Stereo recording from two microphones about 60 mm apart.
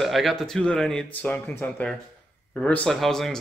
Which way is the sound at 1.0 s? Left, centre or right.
Left.